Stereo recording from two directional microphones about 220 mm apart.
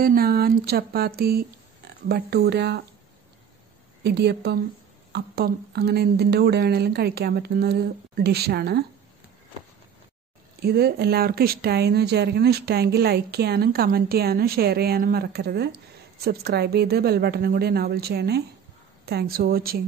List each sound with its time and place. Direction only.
0.0 s speech: 40° right (ahead or behind)
4.0 s speech: 50° right (ahead or behind)
10.6 s speech: 45° right (ahead or behind)